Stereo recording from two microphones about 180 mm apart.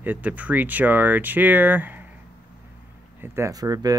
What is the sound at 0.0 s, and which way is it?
Speech, 10° right (ahead or behind).